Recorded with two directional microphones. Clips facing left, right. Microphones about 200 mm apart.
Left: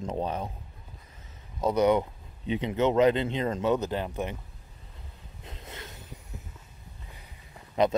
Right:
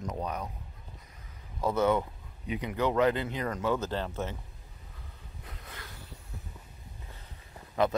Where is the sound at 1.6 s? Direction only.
20° left (ahead or behind).